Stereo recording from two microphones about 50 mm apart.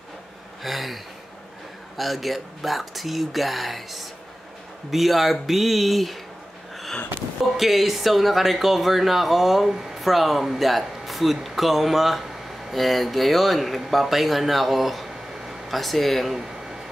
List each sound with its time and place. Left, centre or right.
0.6 s a sound: centre
2.0 s speech: centre
7.4 s speech: centre